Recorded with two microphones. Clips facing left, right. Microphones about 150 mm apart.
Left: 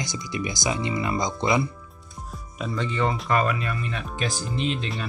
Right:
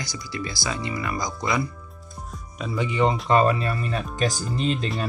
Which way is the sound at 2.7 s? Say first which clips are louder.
Right 4 dB; 15° right (ahead or behind).